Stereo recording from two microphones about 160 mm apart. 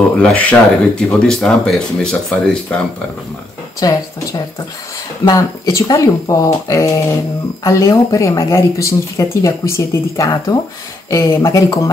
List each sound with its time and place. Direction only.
0.2 s speech: 5° left (ahead or behind)
3.8 s speech: 20° left (ahead or behind)
5.2 s speech: 20° left (ahead or behind)